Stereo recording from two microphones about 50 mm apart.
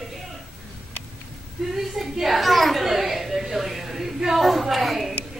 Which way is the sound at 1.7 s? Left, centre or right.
Centre.